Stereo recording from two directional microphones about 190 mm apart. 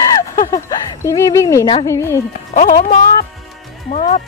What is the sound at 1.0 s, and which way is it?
A child's voice, 15° left (ahead or behind).